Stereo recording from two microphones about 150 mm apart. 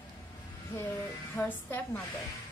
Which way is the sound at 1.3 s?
15° left (ahead or behind).